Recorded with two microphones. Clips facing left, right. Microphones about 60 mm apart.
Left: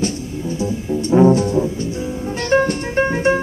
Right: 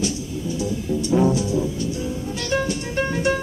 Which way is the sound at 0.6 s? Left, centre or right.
Left.